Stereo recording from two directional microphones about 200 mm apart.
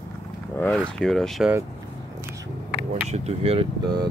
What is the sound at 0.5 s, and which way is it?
Speech, 5° left (ahead or behind).